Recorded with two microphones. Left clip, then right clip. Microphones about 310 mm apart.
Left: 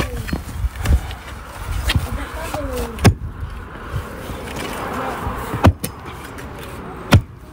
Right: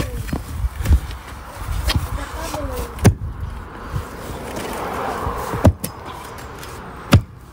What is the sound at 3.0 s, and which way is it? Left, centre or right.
Vehicle, centre.